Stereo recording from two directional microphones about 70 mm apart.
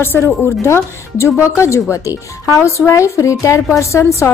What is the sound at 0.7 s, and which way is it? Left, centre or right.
A woman's voice, left.